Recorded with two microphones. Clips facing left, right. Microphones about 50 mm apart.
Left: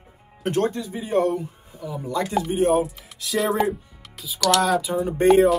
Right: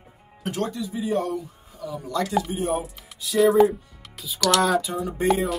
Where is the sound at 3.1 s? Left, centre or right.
Left.